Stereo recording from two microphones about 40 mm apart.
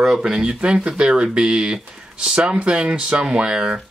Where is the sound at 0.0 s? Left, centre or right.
Centre.